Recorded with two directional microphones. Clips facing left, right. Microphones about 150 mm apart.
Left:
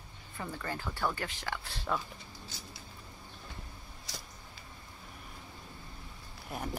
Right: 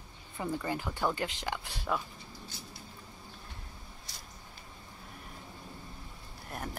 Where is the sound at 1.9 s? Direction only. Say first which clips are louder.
Right 1 dB; 5° right (ahead or behind).